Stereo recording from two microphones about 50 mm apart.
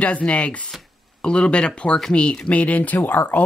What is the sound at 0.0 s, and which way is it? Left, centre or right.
Speech, left.